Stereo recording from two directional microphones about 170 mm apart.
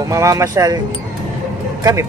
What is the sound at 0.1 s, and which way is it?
Speech, 20° right (ahead or behind).